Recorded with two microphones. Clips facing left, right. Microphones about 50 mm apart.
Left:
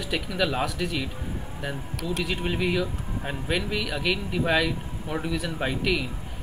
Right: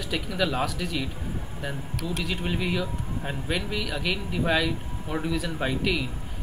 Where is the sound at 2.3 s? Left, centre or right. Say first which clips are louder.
Left 1 dB; left.